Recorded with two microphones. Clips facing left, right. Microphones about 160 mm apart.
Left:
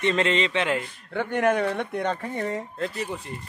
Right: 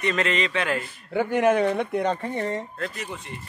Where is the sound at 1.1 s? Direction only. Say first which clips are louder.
Right 3 dB; 5° right (ahead or behind).